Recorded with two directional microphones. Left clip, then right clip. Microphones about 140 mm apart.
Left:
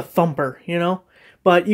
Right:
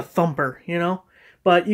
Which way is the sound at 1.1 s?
30° left (ahead or behind).